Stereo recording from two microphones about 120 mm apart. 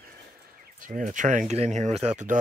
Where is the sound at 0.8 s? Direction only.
90° right.